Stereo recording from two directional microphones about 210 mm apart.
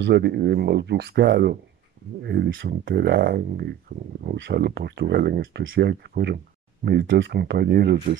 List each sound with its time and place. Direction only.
0.0 s speech: 55° right (ahead or behind)